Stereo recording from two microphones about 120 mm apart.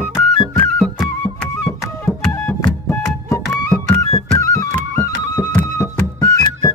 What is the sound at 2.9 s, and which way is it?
Music, 20° left (ahead or behind).